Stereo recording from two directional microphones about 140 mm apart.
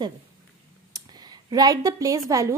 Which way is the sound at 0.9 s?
30° right (ahead or behind).